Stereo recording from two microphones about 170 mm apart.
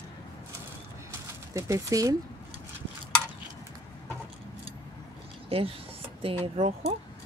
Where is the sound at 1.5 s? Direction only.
20° right (ahead or behind).